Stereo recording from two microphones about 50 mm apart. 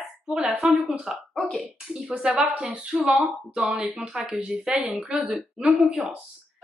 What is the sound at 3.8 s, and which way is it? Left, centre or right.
Speech, centre.